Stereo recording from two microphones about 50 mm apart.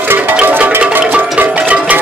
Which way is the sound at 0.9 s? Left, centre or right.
Right.